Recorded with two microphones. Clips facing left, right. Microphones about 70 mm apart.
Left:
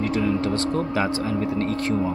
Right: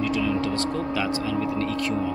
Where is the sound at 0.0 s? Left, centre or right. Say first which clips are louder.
Left 1 dB; left.